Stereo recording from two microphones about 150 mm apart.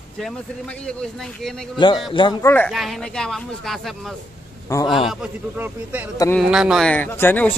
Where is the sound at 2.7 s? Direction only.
Centre (ahead or behind).